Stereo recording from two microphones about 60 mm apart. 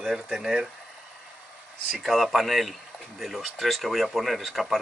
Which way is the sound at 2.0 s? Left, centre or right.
Centre.